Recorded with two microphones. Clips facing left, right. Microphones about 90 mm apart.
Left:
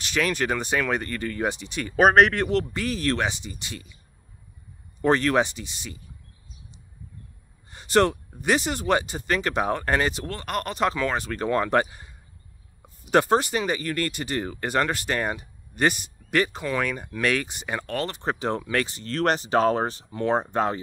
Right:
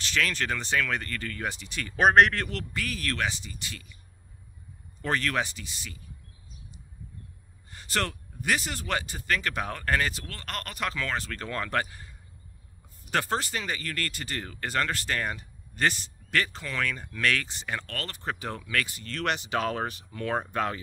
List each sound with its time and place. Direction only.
0.0 s speech: 15° left (ahead or behind)
2.0 s speech: 5° left (ahead or behind)
2.3 s speech: 20° left (ahead or behind)
5.0 s speech: 20° left (ahead or behind)
7.7 s speech: 20° left (ahead or behind)